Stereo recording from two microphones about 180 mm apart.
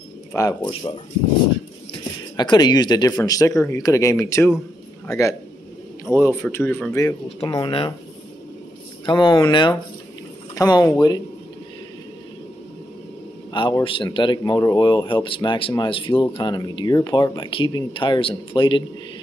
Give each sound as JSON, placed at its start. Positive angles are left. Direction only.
{"t": 0.3, "sound": "speech", "side_deg": 15}
{"t": 2.3, "sound": "a man's voice", "side_deg": 25}
{"t": 7.2, "sound": "speech", "side_deg": 30}
{"t": 9.0, "sound": "speech", "side_deg": 25}
{"t": 13.5, "sound": "speech", "side_deg": 25}